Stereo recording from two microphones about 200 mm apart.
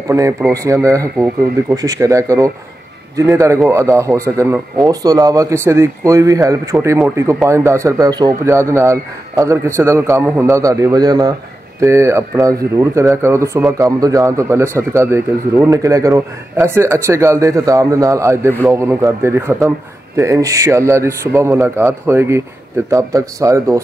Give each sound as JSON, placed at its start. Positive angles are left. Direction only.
{"t": 0.5, "sound": "a man's voice", "side_deg": -15}